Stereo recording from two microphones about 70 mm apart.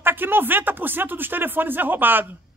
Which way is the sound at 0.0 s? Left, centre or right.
Right.